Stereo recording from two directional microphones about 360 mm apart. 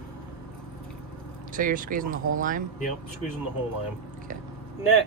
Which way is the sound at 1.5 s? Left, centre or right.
Right.